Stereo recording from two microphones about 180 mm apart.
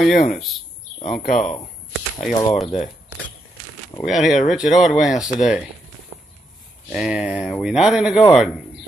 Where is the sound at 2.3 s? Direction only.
20° left (ahead or behind).